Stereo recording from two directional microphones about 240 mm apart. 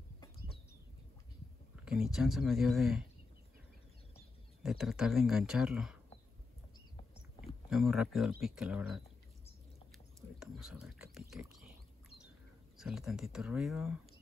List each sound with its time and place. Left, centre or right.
1.9 s speech: centre
4.6 s speech: centre
7.4 s speech: centre
10.4 s speech: centre
12.7 s speech: centre